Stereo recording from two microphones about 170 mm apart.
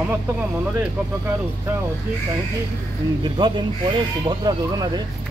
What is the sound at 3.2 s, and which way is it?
Speech, 25° right (ahead or behind).